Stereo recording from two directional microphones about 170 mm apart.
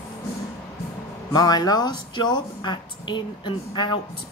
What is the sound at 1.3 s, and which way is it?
A woman's voice, 25° left (ahead or behind).